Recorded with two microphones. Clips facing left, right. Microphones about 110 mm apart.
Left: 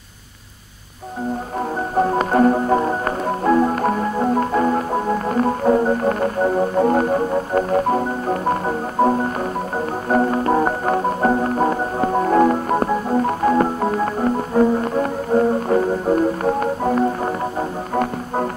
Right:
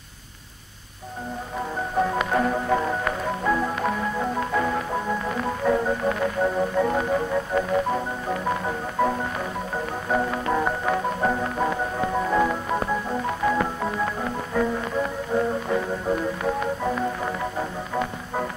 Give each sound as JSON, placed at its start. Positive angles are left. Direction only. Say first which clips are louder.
{"t": 2.0, "sound": "music", "louder": "left 6 dB", "side_deg": 40}
{"t": 7.7, "sound": "marimba", "louder": "left 6 dB", "side_deg": 45}
{"t": 9.8, "sound": "music", "louder": "left 6 dB", "side_deg": 40}